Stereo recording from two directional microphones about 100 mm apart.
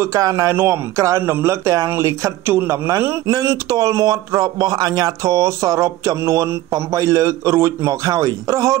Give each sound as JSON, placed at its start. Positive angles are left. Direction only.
{"t": 0.0, "sound": "a man's voice", "side_deg": -30}